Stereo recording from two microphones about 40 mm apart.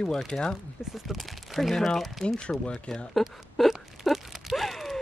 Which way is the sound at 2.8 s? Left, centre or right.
Centre.